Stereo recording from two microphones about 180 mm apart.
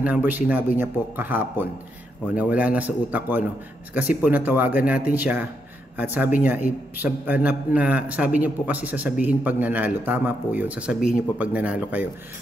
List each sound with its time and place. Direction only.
0.0 s a man's voice: 10° right (ahead or behind)